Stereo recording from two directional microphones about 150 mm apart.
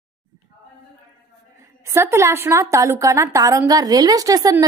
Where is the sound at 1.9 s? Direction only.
20° right (ahead or behind).